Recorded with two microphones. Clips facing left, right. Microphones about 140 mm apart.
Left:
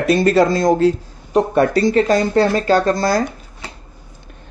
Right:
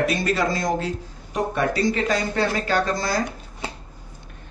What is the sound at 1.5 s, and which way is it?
Speech, 45° left (ahead or behind).